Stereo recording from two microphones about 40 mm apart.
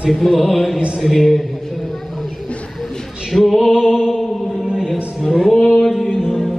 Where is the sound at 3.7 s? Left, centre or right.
Centre.